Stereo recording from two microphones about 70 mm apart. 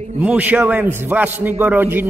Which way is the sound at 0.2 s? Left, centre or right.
Right.